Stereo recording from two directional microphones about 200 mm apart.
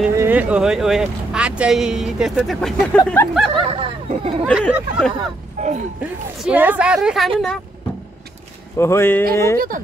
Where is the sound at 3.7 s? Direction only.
30° right (ahead or behind).